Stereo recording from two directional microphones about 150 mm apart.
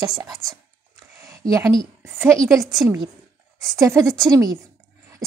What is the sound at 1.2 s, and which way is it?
Speech, 20° right (ahead or behind).